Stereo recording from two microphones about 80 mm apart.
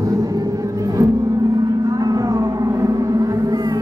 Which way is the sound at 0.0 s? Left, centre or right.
Right.